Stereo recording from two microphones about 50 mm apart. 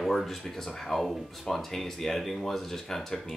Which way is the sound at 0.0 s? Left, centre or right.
Centre.